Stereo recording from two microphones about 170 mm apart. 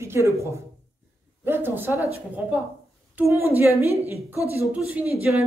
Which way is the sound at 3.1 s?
15° right (ahead or behind).